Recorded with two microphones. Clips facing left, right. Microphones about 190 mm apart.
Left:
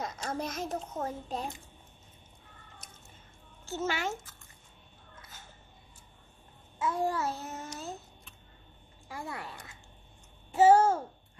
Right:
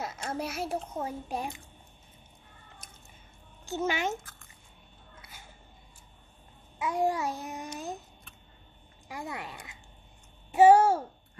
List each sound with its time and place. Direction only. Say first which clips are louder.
0.0 s a woman's voice: right 1 dB; 5° right (ahead or behind)
3.6 s a woman's voice: right 3 dB; 15° right (ahead or behind)
5.2 s a sound: even; 10° right (ahead or behind)
6.8 s a woman's voice: right 2 dB; 15° right (ahead or behind)
9.1 s a woman's voice: right 2 dB; 20° right (ahead or behind)